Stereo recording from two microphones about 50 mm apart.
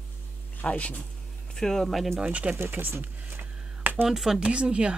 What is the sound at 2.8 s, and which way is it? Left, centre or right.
Speech, right.